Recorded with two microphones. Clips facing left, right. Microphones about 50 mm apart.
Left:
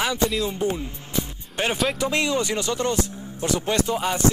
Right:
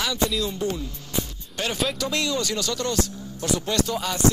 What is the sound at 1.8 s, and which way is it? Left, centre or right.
Speech, left.